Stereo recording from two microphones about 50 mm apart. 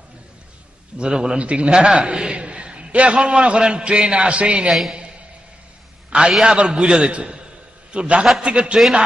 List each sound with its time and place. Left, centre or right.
0.9 s a man's voice: centre
6.0 s a sound: centre
6.4 s a man's voice: centre